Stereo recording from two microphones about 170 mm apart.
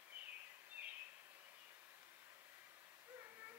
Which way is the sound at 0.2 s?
10° right (ahead or behind).